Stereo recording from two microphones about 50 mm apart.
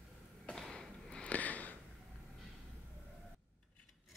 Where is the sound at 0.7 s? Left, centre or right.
Centre.